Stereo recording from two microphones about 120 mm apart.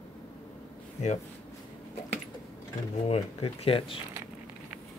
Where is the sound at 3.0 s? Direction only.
60° left (ahead or behind).